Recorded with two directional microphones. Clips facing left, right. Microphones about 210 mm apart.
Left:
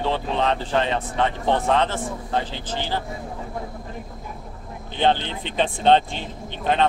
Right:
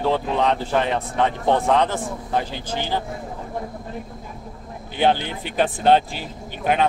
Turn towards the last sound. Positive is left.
turn(degrees=-10)  # may be behind; listen again after turning